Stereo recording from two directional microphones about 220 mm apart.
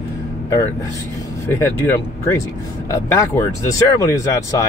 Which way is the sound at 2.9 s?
10° left (ahead or behind).